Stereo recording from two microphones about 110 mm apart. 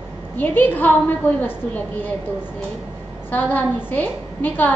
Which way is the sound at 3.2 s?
15° left (ahead or behind).